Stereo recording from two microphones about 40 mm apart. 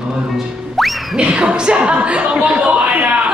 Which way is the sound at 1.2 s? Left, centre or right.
Right.